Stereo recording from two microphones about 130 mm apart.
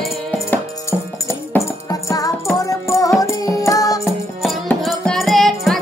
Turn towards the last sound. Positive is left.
turn(degrees=0)  # may be behind; listen again after turning